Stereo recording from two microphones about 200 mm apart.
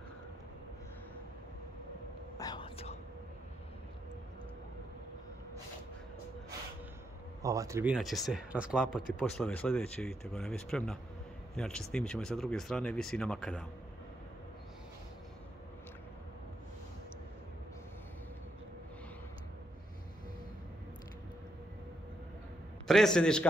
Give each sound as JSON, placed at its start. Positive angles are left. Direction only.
{"t": 2.3, "sound": "whispering", "side_deg": 20}
{"t": 7.4, "sound": "speech", "side_deg": -15}
{"t": 7.9, "sound": "speech", "side_deg": 0}
{"t": 22.8, "sound": "speech", "side_deg": 0}